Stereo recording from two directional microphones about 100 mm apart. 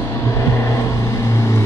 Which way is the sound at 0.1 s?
30° left (ahead or behind).